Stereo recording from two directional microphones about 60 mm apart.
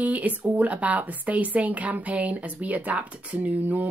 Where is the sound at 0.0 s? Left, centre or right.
Right.